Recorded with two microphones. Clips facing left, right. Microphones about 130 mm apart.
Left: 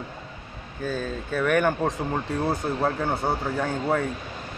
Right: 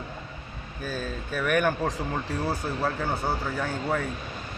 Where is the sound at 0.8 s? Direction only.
20° left (ahead or behind).